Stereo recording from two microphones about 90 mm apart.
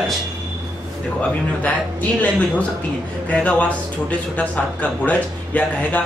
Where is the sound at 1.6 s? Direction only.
15° left (ahead or behind).